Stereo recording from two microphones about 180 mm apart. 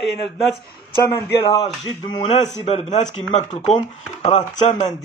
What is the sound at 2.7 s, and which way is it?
Speech, 40° left (ahead or behind).